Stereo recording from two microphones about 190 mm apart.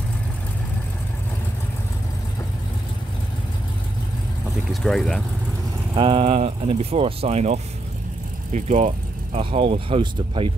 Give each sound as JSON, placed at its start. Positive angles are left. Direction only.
{"t": 4.8, "sound": "speech", "side_deg": 0}
{"t": 5.9, "sound": "speech", "side_deg": -30}